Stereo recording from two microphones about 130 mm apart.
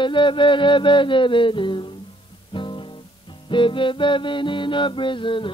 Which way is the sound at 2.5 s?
40° left (ahead or behind).